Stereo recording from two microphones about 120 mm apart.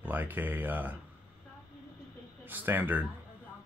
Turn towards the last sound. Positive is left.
turn(degrees=-15)  # may be behind; listen again after turning